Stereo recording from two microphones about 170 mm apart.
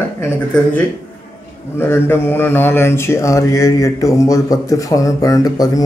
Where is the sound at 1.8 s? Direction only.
15° left (ahead or behind).